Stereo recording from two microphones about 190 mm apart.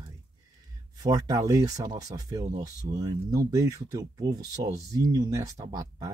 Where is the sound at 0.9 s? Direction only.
20° right (ahead or behind).